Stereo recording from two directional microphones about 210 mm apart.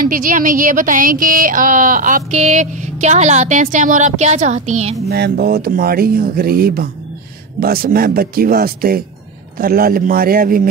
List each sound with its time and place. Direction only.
0.0 s speech: 40° right (ahead or behind)
5.1 s speech: 50° right (ahead or behind)